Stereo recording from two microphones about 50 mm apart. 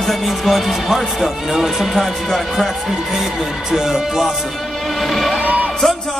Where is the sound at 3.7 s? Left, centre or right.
Centre.